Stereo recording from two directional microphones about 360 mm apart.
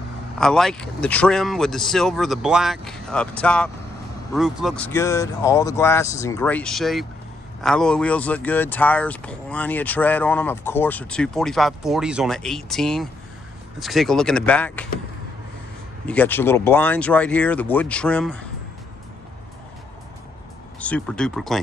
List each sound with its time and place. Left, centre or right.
0.4 s speech: centre
16.1 s speech: centre
20.8 s speech: centre